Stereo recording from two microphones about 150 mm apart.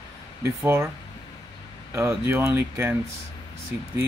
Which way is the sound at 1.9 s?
20° right (ahead or behind).